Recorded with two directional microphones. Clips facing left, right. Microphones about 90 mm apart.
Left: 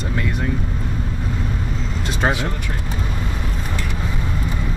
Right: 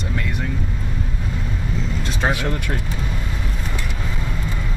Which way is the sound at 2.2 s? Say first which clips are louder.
Left 2 dB; 5° left (ahead or behind).